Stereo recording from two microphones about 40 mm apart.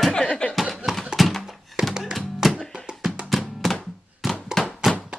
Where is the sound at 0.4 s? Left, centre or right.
Left.